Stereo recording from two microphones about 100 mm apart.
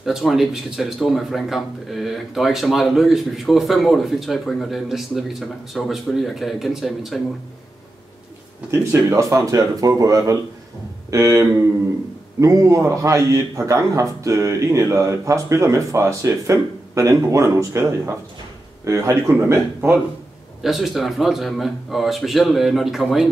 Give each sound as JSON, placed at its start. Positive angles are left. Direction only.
{"t": 0.0, "sound": "speech", "side_deg": -5}
{"t": 8.6, "sound": "a man's voice", "side_deg": -25}
{"t": 20.6, "sound": "speech", "side_deg": 0}